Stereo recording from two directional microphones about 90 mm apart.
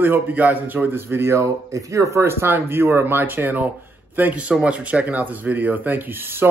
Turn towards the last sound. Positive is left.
turn(degrees=-25)  # may be behind; listen again after turning